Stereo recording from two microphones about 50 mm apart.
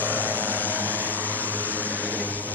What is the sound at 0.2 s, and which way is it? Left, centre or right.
Vehicle, right.